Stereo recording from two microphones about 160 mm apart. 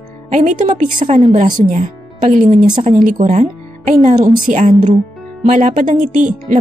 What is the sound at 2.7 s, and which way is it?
Speech, 30° right (ahead or behind).